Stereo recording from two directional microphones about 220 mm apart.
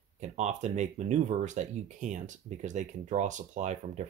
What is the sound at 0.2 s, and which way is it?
Speech, 30° right (ahead or behind).